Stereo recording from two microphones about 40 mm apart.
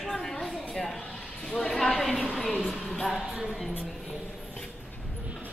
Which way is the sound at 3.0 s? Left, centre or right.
Centre.